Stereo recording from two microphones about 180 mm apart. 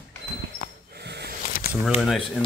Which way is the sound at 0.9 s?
65° right (ahead or behind).